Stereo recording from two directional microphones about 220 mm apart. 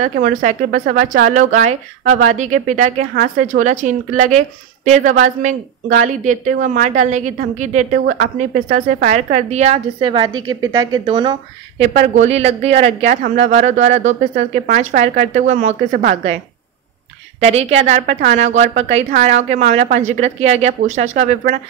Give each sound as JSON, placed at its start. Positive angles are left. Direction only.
{"t": 0.0, "sound": "a woman's voice", "side_deg": -35}
{"t": 17.4, "sound": "speech", "side_deg": -30}